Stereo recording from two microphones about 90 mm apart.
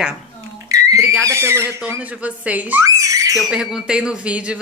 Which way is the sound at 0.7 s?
40° right (ahead or behind).